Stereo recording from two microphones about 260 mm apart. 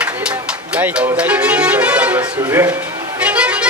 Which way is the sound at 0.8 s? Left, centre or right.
Centre.